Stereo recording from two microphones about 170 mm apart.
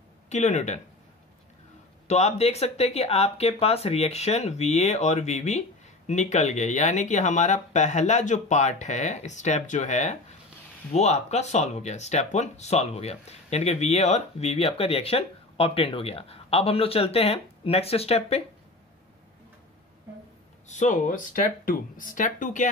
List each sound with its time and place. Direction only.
0.3 s speech: 45° left (ahead or behind)
2.0 s speech: 40° left (ahead or behind)
20.6 s speech: 45° left (ahead or behind)